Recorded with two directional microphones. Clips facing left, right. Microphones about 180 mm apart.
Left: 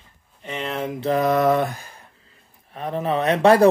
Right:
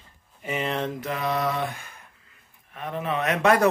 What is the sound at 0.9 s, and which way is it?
Speech, 30° left (ahead or behind).